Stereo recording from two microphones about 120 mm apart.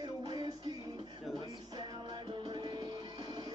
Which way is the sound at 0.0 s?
35° right (ahead or behind).